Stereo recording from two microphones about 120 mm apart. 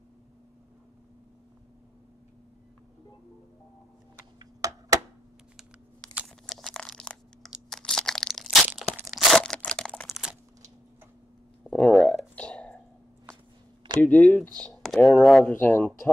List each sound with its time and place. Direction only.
4.4 s a sound: 30° right (ahead or behind)
5.6 s computer keyboard: 5° left (ahead or behind)
6.2 s crunch: 5° left (ahead or behind)
7.7 s crushing: 5° left (ahead or behind)
9.1 s crunch: 5° left (ahead or behind)
11.6 s a sound: 10° left (ahead or behind)
12.4 s burping: 10° left (ahead or behind)
14.0 s speech: 10° left (ahead or behind)